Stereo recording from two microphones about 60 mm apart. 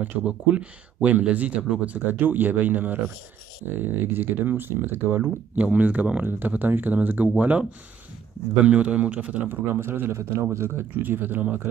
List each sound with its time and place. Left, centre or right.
0.2 s speech: right
5.6 s speech: right
8.6 s speech: right
9.8 s speech: right
10.1 s a man's voice: right
11.0 s speech: right